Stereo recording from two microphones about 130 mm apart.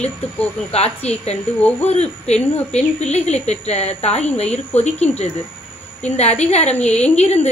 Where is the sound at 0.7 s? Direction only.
50° left (ahead or behind).